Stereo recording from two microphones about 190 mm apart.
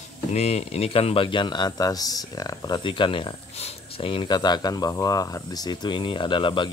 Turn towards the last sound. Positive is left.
turn(degrees=25)  # may be behind; listen again after turning